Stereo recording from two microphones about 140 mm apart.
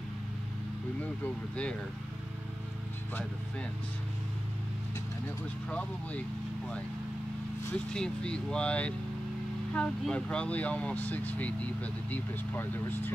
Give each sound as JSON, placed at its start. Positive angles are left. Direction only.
{"t": 1.0, "sound": "speech", "side_deg": 10}
{"t": 5.7, "sound": "speech", "side_deg": 10}
{"t": 7.7, "sound": "speech", "side_deg": 5}